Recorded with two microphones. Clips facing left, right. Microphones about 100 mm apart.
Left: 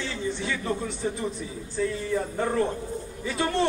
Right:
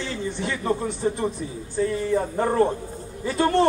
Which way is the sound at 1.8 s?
35° right (ahead or behind).